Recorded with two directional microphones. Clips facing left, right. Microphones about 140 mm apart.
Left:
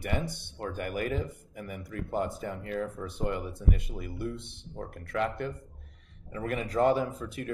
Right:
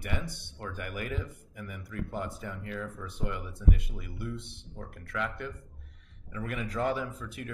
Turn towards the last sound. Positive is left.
turn(degrees=35)  # may be behind; listen again after turning